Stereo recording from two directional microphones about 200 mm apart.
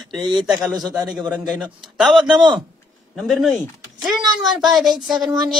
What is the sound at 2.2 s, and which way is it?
Speech, 20° right (ahead or behind).